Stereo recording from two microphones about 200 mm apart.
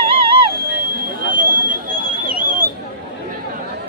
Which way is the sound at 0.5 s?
45° right (ahead or behind).